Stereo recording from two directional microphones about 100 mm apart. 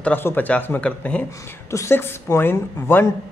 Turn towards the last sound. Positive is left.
turn(degrees=20)  # may be behind; listen again after turning